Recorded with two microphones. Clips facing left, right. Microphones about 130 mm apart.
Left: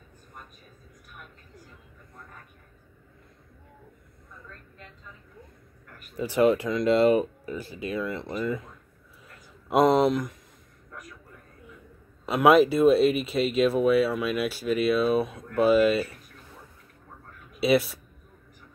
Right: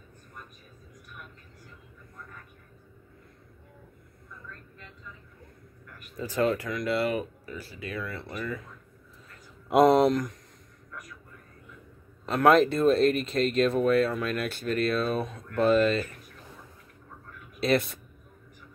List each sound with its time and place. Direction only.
6.1 s speech: 20° left (ahead or behind)
9.7 s speech: centre (ahead or behind)
12.3 s speech: 5° left (ahead or behind)
17.6 s speech: 5° left (ahead or behind)